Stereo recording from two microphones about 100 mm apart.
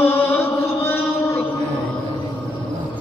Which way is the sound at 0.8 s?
20° left (ahead or behind).